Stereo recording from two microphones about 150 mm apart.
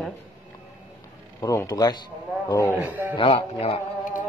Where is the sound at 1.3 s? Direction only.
20° left (ahead or behind).